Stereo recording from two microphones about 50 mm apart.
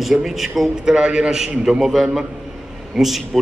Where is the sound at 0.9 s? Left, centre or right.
Centre.